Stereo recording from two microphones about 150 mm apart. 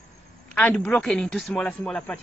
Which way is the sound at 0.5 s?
10° left (ahead or behind).